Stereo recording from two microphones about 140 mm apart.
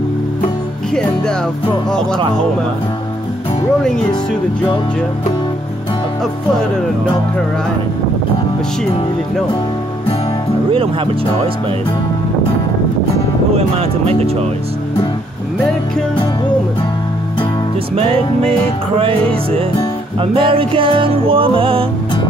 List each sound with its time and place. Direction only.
13.6 s speech: 45° right (ahead or behind)
20.2 s music: 40° right (ahead or behind)